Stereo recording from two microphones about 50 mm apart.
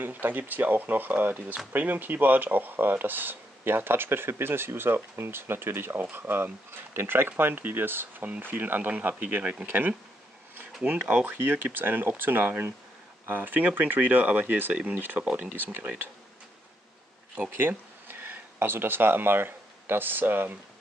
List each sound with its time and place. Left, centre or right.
0.0 s speech: right
9.7 s speech: right
15.5 s speech: right
17.5 s speech: right